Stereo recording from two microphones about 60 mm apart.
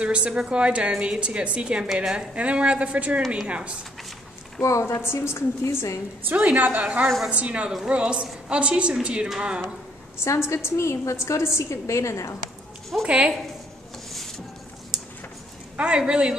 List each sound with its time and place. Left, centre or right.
0.0 s a woman's voice: centre
0.9 s a woman's voice: centre
1.2 s a woman's voice: centre
4.6 s a woman's voice: left
6.2 s a woman's voice: right
10.2 s a woman's voice: left
13.0 s a woman's voice: centre
15.7 s a woman's voice: centre